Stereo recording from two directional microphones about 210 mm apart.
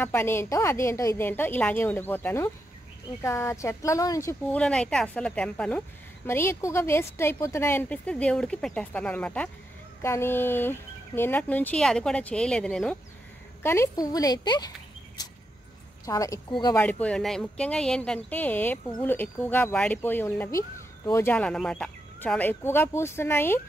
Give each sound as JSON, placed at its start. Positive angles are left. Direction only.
{"t": 0.0, "sound": "speech", "side_deg": 10}
{"t": 16.1, "sound": "speech", "side_deg": 15}
{"t": 16.8, "sound": "speech", "side_deg": 5}